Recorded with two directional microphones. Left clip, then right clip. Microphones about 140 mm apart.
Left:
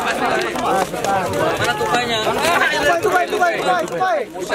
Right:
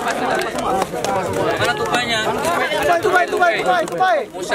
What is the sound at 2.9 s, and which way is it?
Speech, 30° right (ahead or behind).